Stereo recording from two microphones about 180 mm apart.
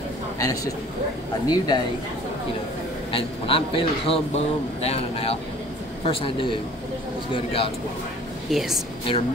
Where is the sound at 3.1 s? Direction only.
30° left (ahead or behind).